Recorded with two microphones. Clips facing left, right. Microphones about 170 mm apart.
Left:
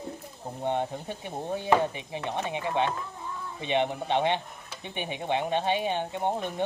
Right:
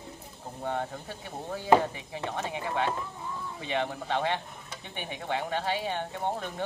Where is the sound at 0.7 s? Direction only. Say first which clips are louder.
Left 4 dB; 20° left (ahead or behind).